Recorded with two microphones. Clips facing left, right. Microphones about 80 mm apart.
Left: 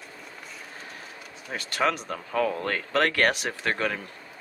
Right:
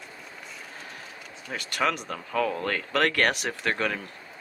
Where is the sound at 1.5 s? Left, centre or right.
Left.